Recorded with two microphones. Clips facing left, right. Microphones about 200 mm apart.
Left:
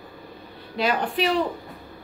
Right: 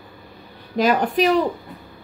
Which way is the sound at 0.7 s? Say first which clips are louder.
Right 6 dB; 45° right (ahead or behind).